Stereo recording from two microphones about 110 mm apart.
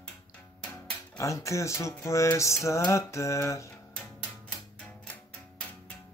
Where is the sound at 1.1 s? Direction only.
30° left (ahead or behind).